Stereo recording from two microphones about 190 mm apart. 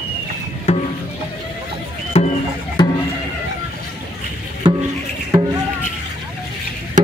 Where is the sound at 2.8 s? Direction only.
20° left (ahead or behind).